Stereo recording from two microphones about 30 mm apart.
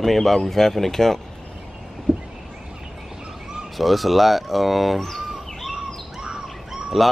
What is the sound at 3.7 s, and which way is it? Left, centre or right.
Speech, centre.